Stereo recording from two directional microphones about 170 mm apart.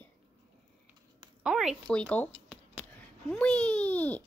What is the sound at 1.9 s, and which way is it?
Speech, 5° left (ahead or behind).